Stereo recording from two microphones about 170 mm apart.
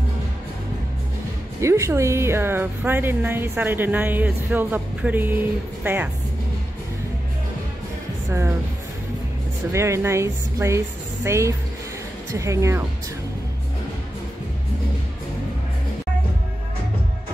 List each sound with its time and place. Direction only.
1.6 s a woman's voice: 15° right (ahead or behind)
8.3 s a woman's voice: 15° right (ahead or behind)
9.7 s a woman's voice: 15° right (ahead or behind)